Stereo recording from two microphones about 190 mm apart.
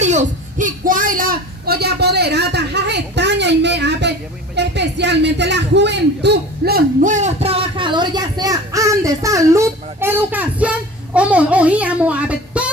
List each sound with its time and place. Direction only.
0.0 s a man's voice: 40° right (ahead or behind); by 12.6 s 5° right (ahead or behind)